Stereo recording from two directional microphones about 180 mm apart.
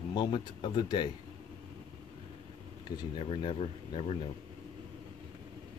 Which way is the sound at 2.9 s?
30° left (ahead or behind).